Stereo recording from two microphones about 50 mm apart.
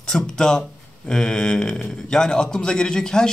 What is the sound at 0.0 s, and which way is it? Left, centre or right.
Speech, centre.